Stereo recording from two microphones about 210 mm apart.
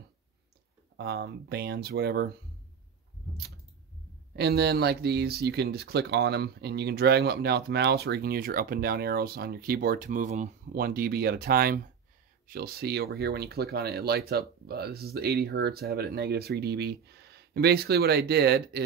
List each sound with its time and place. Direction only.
0.9 s speech: 50° right (ahead or behind)
4.4 s speech: 50° right (ahead or behind)